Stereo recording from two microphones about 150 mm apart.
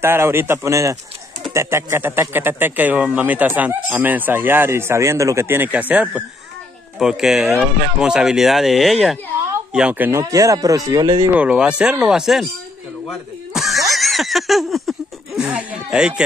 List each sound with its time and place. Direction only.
0.0 s speech: 15° right (ahead or behind)
11.1 s speech: 10° right (ahead or behind)
13.5 s snicker: centre (ahead or behind)